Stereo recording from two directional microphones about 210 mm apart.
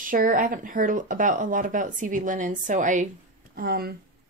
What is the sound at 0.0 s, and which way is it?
Speech, 40° right (ahead or behind).